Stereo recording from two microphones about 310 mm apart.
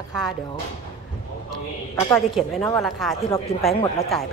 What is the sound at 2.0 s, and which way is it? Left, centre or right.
Speech, centre.